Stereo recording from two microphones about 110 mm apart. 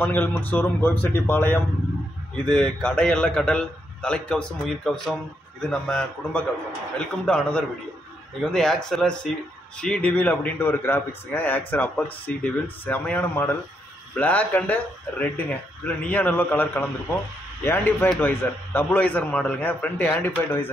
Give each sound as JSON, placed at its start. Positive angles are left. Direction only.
{"t": 0.0, "sound": "a man's voice", "side_deg": 15}
{"t": 2.4, "sound": "a man's voice", "side_deg": 5}